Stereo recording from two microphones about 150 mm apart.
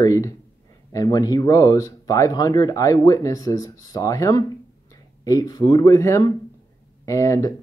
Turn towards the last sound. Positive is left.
turn(degrees=20)  # may be behind; listen again after turning